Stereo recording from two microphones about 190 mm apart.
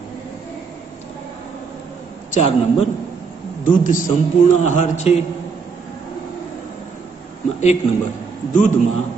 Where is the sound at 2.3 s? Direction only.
35° left (ahead or behind).